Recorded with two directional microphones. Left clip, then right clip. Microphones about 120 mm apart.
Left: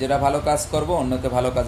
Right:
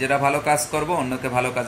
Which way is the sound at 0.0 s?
25° left (ahead or behind).